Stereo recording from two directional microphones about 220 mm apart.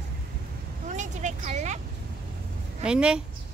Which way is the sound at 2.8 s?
5° right (ahead or behind).